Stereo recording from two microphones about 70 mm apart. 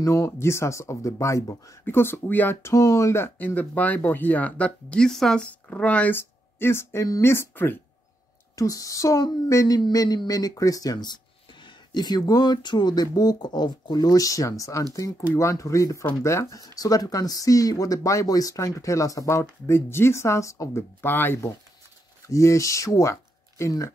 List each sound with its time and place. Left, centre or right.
0.0 s speech: left
1.9 s speech: left
2.6 s speech: left
3.3 s speech: left; by 5.5 s centre
5.7 s speech: centre
6.1 s speech: left
8.5 s speech: left
9.8 s speech: left
19.6 s speech: left
21.0 s speech: left
22.3 s speech: left